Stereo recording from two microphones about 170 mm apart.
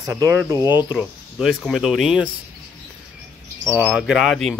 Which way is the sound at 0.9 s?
Centre (ahead or behind).